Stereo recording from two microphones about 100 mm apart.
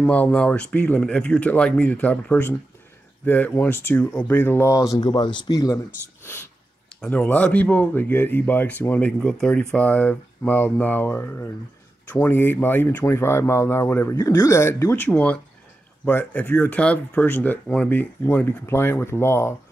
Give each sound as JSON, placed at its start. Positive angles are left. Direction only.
{"t": 0.0, "sound": "speech", "side_deg": 15}
{"t": 6.2, "sound": "sneeze", "side_deg": 25}
{"t": 7.1, "sound": "speech", "side_deg": 15}
{"t": 14.1, "sound": "speech", "side_deg": 35}